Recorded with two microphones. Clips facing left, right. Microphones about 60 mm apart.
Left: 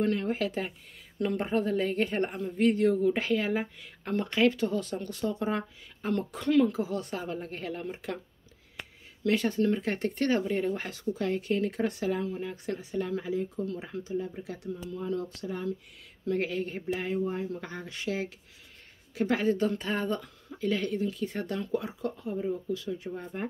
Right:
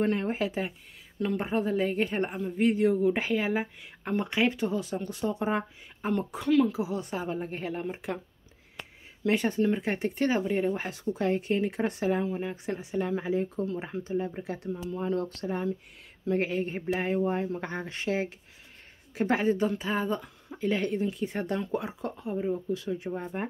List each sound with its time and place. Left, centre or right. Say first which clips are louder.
0.0 s speech: right 1 dB; right
0.5 s a woman's voice: right 1 dB; centre
6.4 s a woman's voice: even; centre
9.2 s a woman's voice: right 1 dB; right
15.0 s speech: right 3 dB; right
16.3 s speech: right 2 dB; right
16.9 s speech: right 3 dB; right